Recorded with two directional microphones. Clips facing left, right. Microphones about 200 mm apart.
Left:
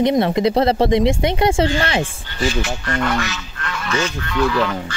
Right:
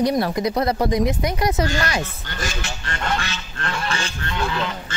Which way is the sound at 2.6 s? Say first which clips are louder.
Left 7 dB; 30° right (ahead or behind).